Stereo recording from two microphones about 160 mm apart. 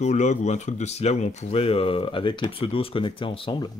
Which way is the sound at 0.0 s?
45° left (ahead or behind).